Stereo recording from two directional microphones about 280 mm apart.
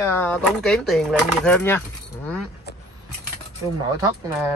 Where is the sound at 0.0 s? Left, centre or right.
Centre.